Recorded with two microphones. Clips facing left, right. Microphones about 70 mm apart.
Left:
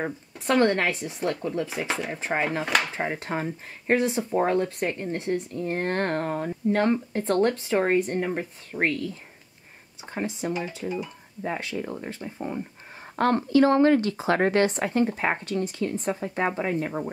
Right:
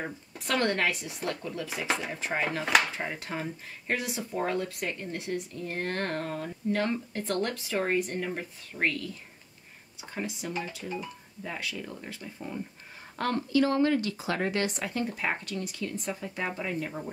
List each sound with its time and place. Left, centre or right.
0.0 s speech: left
2.6 s speech: centre
2.9 s speech: left
10.1 s speech: left